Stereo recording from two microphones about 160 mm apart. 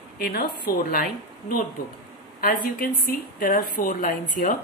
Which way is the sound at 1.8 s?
65° left (ahead or behind).